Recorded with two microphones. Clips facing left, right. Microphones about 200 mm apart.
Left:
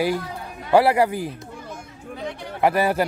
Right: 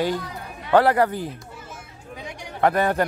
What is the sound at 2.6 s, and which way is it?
Speech, 5° left (ahead or behind).